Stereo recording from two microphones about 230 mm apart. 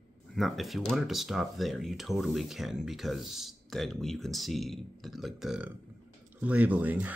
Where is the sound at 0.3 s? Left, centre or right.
Centre.